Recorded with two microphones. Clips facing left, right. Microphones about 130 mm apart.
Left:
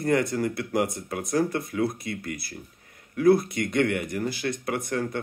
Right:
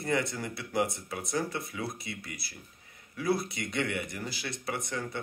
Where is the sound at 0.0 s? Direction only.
45° left (ahead or behind).